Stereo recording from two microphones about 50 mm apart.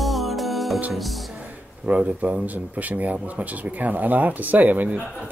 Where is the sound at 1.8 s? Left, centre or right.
Right.